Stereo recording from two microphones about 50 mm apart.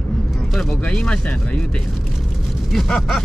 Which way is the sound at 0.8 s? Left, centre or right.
Left.